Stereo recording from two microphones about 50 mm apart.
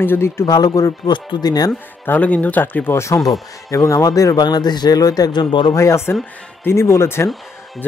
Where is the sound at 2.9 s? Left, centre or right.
Left.